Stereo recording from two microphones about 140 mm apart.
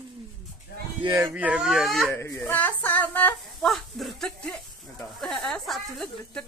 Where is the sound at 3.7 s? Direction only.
Centre (ahead or behind).